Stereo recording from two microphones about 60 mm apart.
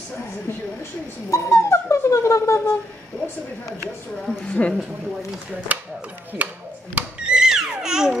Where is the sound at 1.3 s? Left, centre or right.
Left.